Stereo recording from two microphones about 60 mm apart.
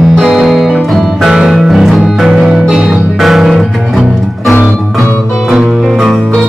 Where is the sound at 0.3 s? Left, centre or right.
Centre.